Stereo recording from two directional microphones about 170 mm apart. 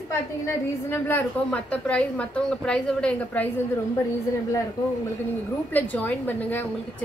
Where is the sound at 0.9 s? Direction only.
10° left (ahead or behind).